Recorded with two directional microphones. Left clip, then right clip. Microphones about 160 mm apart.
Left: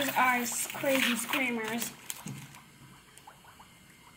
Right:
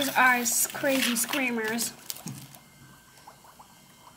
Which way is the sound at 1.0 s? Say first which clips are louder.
Right 2 dB; 30° right (ahead or behind).